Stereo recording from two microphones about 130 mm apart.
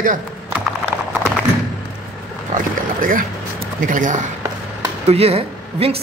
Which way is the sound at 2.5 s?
90° right.